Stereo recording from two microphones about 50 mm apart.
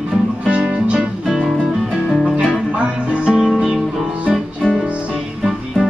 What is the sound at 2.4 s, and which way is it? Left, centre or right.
Music, right.